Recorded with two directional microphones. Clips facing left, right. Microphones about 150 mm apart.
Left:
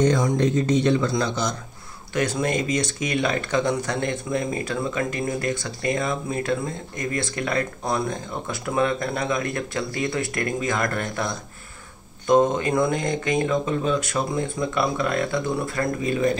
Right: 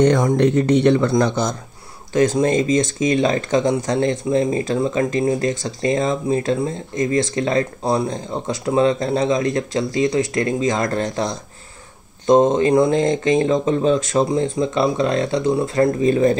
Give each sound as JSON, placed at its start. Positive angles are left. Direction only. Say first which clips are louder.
{"t": 0.0, "sound": "speech", "louder": "right 5 dB", "side_deg": -65}
{"t": 2.3, "sound": "speech", "louder": "right 7 dB", "side_deg": -25}